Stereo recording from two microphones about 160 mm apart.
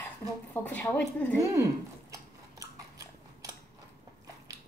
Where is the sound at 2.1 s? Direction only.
20° right (ahead or behind).